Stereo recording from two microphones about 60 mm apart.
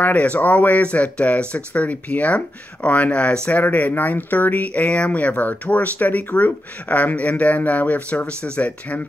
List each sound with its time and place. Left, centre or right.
0.0 s speech: left